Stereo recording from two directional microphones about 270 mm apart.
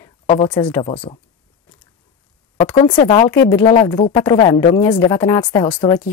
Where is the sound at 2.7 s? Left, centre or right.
Centre.